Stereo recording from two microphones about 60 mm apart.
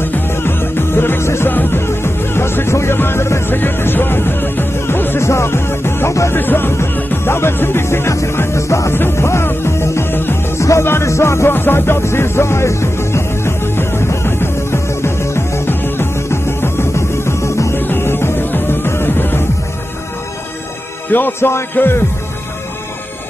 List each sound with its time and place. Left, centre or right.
0.0 s music: left
5.2 s music: left
8.9 s music: left
10.6 s music: left
11.5 s music: left
17.7 s music: left
21.1 s music: left